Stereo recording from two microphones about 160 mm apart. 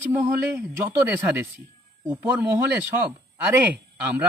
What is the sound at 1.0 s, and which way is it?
A man's voice, 15° right (ahead or behind).